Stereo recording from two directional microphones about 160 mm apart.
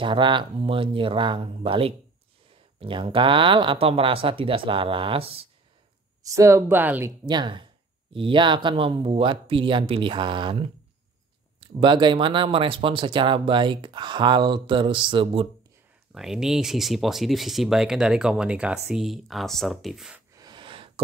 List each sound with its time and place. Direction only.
0.0 s speech: 30° right (ahead or behind)
6.3 s speech: 20° right (ahead or behind)
7.2 s speech: 30° right (ahead or behind)
16.1 s speech: 5° right (ahead or behind)
20.3 s a sound: 25° right (ahead or behind)